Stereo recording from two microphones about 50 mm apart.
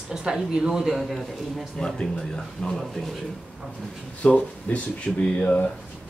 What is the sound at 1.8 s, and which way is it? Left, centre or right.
Speech, centre.